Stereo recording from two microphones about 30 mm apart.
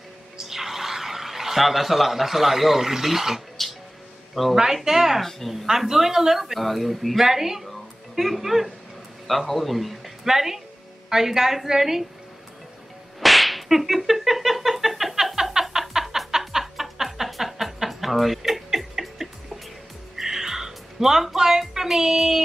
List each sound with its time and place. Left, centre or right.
0.4 s speech: centre
4.4 s speech: centre
4.8 s speech: centre
6.6 s speech: centre
7.2 s speech: centre
9.5 s speech: centre
10.2 s speech: centre
13.2 s whip: centre
15.9 s music: centre
16.7 s music: centre
21.4 s speech: centre